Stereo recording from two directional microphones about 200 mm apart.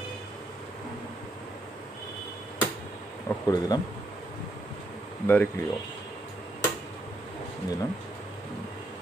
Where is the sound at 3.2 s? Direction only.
20° left (ahead or behind).